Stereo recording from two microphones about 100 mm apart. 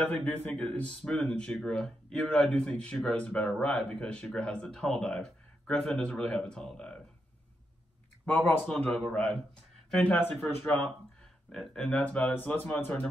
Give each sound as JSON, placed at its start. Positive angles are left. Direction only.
{"t": 0.2, "sound": "speech", "side_deg": 15}
{"t": 8.3, "sound": "speech", "side_deg": 15}
{"t": 10.5, "sound": "speech", "side_deg": 20}
{"t": 11.5, "sound": "speech", "side_deg": 5}